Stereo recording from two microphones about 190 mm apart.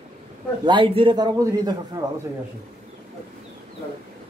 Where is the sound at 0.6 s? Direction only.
25° right (ahead or behind).